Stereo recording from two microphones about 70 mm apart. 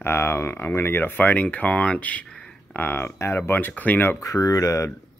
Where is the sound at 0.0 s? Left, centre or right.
Left; by 2.5 s centre.